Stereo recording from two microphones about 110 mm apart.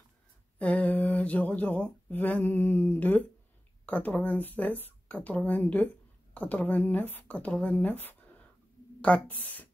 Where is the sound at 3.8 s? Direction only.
15° left (ahead or behind).